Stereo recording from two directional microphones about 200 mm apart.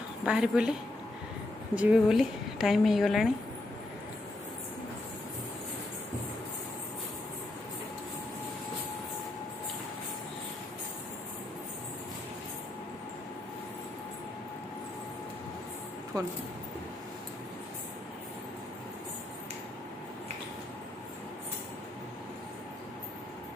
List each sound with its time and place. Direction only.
0.2 s a woman's voice: 5° right (ahead or behind)
1.8 s a woman's voice: 5° right (ahead or behind)
16.1 s a sound: 20° right (ahead or behind)